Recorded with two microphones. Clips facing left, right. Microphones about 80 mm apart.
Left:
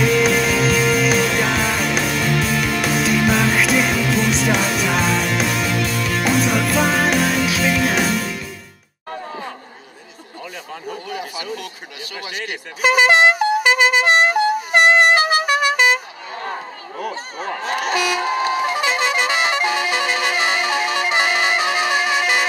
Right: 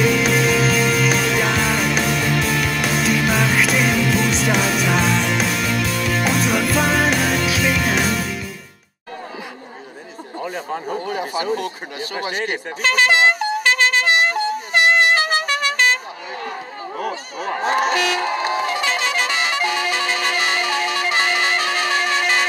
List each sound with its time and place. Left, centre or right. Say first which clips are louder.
0.0 s music: left 1 dB; centre
10.4 s speech: right 6 dB; right
12.8 s speech: left 3 dB; centre
13.3 s music: left 3 dB; centre
14.2 s vehicle horn: left 4 dB; centre
17.6 s speech: right 5 dB; right
17.9 s train: even; centre
18.7 s music: left 2 dB; centre